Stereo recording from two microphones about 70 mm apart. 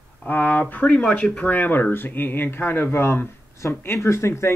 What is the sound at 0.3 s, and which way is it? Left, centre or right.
Speech, left.